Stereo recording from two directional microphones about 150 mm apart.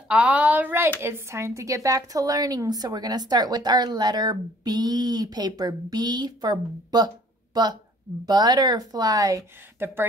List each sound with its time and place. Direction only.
0.1 s a woman's voice: 10° right (ahead or behind)